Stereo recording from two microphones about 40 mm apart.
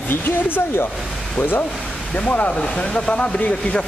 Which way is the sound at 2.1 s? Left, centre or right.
Left.